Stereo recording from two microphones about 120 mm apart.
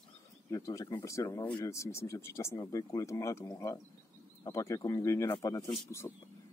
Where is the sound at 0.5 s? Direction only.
25° left (ahead or behind).